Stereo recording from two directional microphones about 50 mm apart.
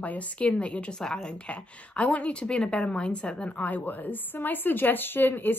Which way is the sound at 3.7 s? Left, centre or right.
Left.